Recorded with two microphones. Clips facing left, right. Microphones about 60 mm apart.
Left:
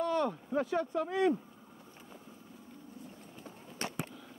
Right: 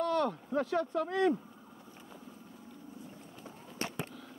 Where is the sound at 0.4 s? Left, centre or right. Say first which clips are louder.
Even; centre.